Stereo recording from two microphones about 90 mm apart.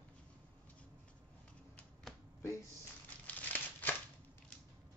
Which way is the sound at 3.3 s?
20° left (ahead or behind).